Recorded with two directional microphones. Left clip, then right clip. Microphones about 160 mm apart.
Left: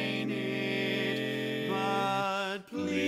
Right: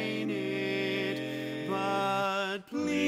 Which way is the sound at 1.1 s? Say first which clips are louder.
Left 3 dB; 20° left (ahead or behind).